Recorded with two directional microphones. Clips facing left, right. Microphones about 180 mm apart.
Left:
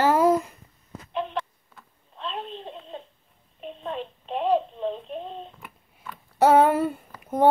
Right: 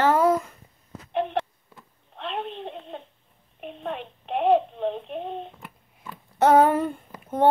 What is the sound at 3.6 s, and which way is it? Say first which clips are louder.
Child singing: even; 60° right (ahead or behind).